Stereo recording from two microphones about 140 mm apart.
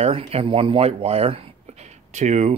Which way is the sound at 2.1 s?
55° right (ahead or behind).